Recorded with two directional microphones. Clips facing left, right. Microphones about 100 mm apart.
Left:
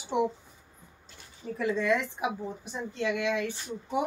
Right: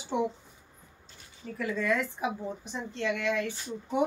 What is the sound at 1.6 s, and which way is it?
A woman's voice, 20° left (ahead or behind).